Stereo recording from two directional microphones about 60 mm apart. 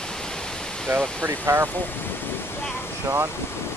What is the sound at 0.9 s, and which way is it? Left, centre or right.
Speech, right.